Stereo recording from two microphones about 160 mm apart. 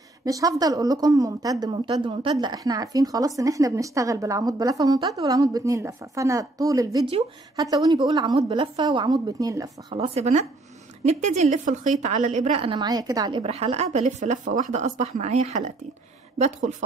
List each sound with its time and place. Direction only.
0.2 s speech: 20° right (ahead or behind)
9.9 s a woman's voice: 40° right (ahead or behind); by 13.4 s 25° right (ahead or behind)
13.4 s a woman's voice: 40° right (ahead or behind)